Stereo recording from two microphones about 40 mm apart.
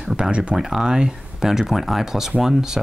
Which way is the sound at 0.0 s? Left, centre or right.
Centre.